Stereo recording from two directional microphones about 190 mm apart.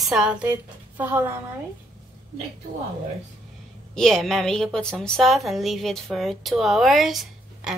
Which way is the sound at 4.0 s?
5° left (ahead or behind).